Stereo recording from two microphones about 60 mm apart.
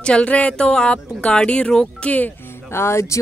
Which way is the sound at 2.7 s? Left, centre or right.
Left.